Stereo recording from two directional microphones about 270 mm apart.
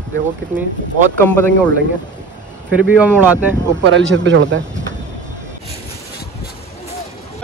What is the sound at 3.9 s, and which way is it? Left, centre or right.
Speech, right.